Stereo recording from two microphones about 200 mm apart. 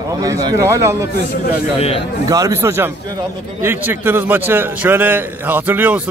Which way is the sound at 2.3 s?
15° right (ahead or behind).